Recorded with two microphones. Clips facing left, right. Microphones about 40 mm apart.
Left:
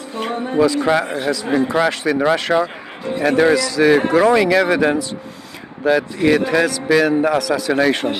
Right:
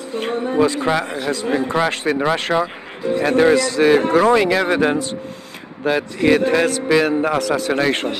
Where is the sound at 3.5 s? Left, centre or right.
Right.